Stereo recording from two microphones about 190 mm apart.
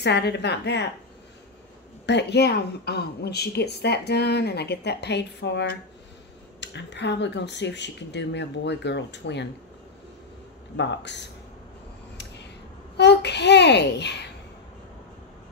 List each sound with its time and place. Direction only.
0.0 s a woman's voice: 60° left (ahead or behind)
2.0 s a woman's voice: 65° left (ahead or behind)
10.8 s a woman's voice: 65° left (ahead or behind)
12.9 s a woman's voice: 65° left (ahead or behind)